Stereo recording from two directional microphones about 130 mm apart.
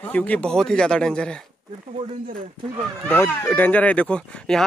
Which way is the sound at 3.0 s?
15° left (ahead or behind).